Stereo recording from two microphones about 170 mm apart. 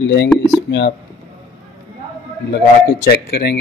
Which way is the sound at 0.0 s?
90° left.